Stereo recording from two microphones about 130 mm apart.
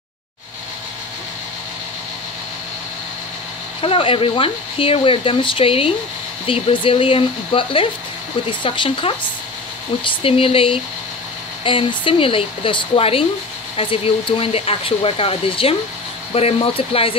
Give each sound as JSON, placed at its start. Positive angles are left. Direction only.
{"t": 3.8, "sound": "speech", "side_deg": 45}